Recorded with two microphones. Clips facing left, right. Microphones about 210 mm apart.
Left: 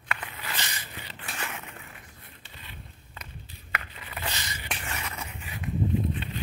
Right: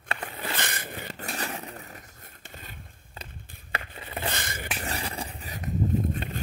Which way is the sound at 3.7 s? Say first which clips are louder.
Right 3 dB; 30° right (ahead or behind).